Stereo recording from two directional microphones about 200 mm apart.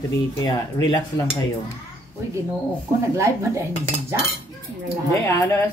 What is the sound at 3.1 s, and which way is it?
Speech, 15° right (ahead or behind).